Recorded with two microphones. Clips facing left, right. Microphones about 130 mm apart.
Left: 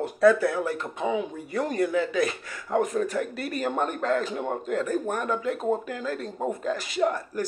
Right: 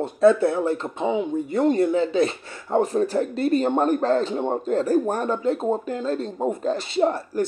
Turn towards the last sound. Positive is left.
turn(degrees=-30)  # may be behind; listen again after turning